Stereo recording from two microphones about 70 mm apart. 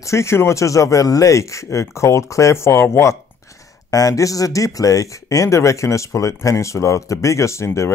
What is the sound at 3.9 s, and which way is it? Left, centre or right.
Speech, left.